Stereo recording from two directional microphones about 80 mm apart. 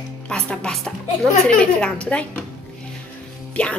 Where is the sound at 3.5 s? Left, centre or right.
Centre.